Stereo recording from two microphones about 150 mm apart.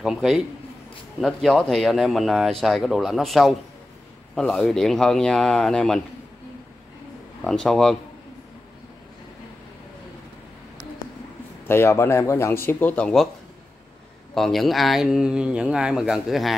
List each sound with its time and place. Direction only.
0.0 s speech: 5° right (ahead or behind)
7.4 s speech: 5° left (ahead or behind)
11.6 s speech: 15° left (ahead or behind)
14.3 s speech: centre (ahead or behind)